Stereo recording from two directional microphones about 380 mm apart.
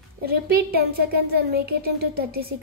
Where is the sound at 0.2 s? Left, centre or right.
Right.